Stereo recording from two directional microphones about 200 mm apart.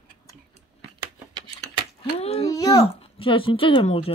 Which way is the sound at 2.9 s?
25° left (ahead or behind).